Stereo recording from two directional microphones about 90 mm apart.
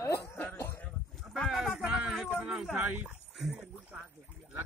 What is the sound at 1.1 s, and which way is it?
Livestock, centre (ahead or behind).